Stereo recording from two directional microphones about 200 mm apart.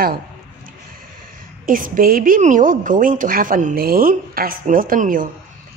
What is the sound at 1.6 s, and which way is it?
A woman's voice, 45° right (ahead or behind).